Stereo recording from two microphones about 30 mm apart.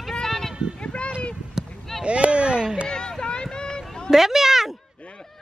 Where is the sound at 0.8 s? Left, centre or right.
Left.